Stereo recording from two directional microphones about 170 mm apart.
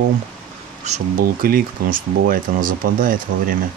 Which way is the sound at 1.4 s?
55° right (ahead or behind).